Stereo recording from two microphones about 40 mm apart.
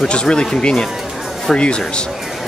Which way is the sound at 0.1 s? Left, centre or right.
Left.